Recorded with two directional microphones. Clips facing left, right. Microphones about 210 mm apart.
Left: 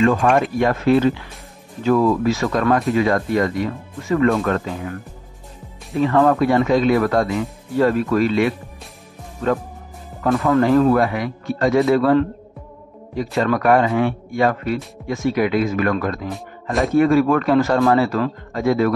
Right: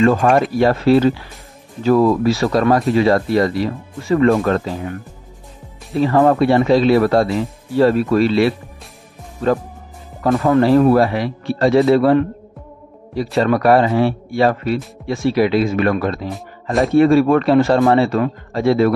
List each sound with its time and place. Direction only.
0.0 s speech: 35° right (ahead or behind)
5.9 s speech: 30° right (ahead or behind)
10.9 s speech: 30° right (ahead or behind)